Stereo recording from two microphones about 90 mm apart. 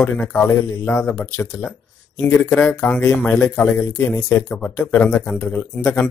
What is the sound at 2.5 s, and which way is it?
A man's voice, 15° left (ahead or behind).